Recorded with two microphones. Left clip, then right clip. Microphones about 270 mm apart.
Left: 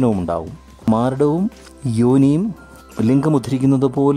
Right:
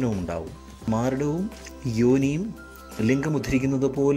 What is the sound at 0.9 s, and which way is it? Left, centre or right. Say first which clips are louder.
Speech: left 9 dB; centre.